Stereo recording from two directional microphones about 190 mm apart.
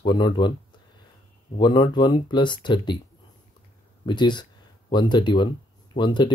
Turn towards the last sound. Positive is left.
turn(degrees=25)  # may be behind; listen again after turning